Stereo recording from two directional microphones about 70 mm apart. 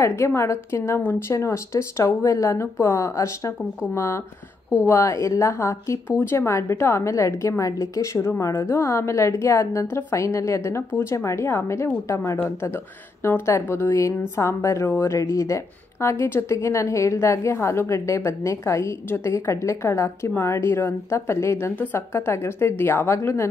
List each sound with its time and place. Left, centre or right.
0.0 s a woman's voice: left